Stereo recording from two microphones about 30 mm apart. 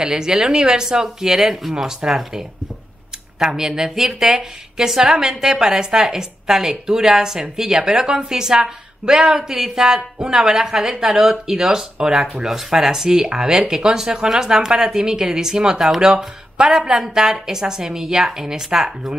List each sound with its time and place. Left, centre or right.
0.0 s a woman's voice: right